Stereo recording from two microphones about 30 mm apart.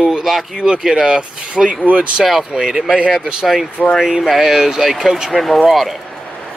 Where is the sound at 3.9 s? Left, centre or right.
Right.